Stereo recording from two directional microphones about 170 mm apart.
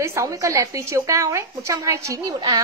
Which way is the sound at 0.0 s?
20° right (ahead or behind).